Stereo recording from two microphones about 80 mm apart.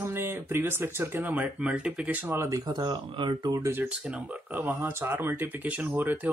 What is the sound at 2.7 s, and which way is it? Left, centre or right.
Speech, right.